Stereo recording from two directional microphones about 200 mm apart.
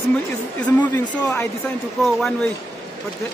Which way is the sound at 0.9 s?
10° left (ahead or behind).